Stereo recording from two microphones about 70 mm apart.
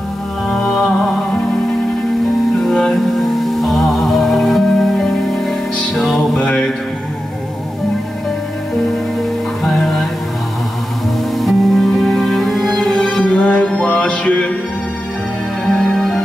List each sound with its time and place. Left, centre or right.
0.5 s music: centre
2.6 s music: centre
6.3 s a sound: centre
9.6 s music: centre
11.3 s music: centre
15.6 s music: centre